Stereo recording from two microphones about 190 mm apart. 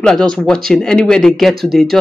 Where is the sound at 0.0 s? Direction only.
Centre (ahead or behind).